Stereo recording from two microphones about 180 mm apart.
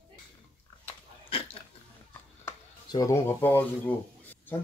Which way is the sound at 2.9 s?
20° left (ahead or behind).